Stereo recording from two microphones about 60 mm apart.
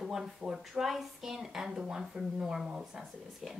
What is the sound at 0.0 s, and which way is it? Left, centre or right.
A woman's voice, centre.